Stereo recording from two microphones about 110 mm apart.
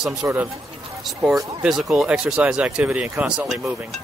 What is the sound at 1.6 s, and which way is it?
Speech, 5° right (ahead or behind).